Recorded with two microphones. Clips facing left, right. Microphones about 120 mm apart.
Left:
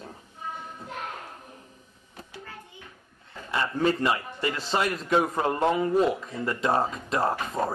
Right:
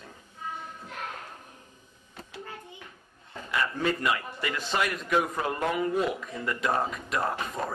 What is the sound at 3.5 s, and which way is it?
A man's voice, 30° left (ahead or behind).